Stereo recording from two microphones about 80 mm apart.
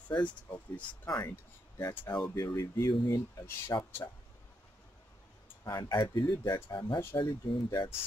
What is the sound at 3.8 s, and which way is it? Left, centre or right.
Speech, left.